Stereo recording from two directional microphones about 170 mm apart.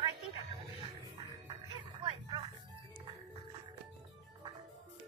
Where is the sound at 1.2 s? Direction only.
30° right (ahead or behind).